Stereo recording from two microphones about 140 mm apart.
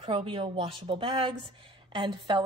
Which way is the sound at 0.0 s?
40° right (ahead or behind).